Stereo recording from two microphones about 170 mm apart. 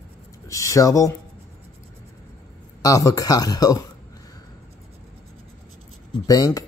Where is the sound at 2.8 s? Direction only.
20° left (ahead or behind).